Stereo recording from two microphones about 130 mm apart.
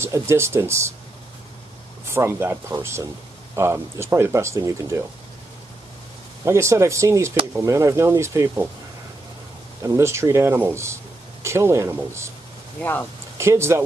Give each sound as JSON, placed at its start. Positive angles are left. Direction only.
{"t": 0.0, "sound": "speech", "side_deg": -20}
{"t": 2.0, "sound": "speech", "side_deg": -20}
{"t": 6.4, "sound": "speech", "side_deg": -20}
{"t": 9.8, "sound": "speech", "side_deg": -20}
{"t": 12.8, "sound": "speech", "side_deg": 15}
{"t": 13.4, "sound": "speech", "side_deg": -20}